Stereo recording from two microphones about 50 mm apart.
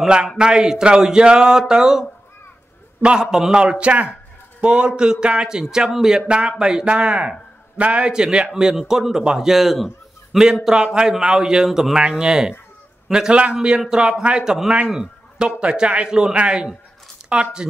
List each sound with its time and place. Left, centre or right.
0.0 s a man's voice: centre
3.6 s a man's voice: right
6.2 s a man's voice: right
8.1 s a man's voice: centre